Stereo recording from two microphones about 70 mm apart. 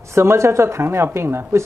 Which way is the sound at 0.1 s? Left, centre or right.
Right.